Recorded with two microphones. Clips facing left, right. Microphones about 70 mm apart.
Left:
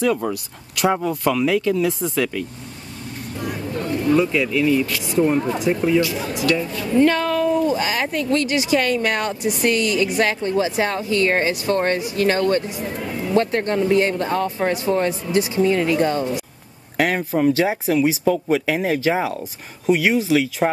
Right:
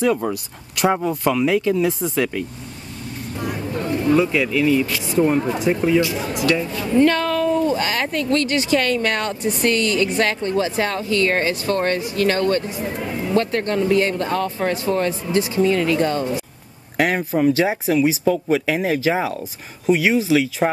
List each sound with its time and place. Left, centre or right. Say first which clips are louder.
0.3 s speech: right 1 dB; right
0.9 s speech: right 1 dB; centre
3.7 s a sound: right 1 dB; right
4.1 s speech: even; centre
7.0 s speech: even; centre
12.6 s speech: right 1 dB; right
13.3 s speech: left 1 dB; left
16.9 s speech: even; centre